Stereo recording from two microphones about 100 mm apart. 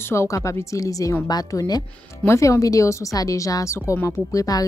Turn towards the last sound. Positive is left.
turn(degrees=35)  # may be behind; listen again after turning